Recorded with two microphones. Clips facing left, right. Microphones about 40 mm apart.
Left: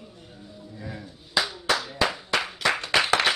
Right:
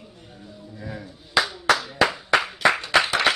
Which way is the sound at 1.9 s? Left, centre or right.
Centre.